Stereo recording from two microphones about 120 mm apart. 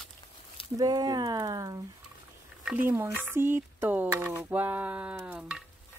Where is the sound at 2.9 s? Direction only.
20° right (ahead or behind).